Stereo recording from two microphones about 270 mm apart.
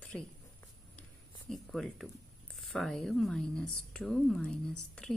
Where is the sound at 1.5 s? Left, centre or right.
Centre.